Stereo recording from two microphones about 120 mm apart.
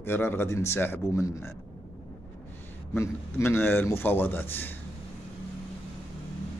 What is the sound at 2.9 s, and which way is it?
A man's voice, 20° left (ahead or behind).